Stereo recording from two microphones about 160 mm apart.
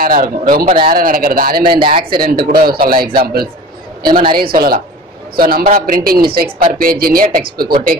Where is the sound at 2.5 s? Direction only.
65° right (ahead or behind).